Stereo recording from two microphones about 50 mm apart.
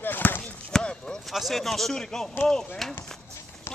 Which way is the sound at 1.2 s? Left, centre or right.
Centre.